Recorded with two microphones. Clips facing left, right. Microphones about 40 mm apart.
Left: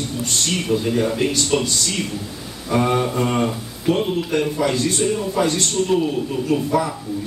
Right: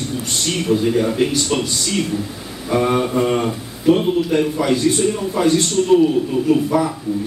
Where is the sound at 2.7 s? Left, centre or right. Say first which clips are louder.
Right 2 dB; centre.